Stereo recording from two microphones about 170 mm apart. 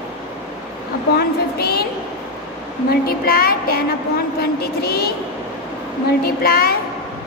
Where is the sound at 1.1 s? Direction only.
65° left (ahead or behind).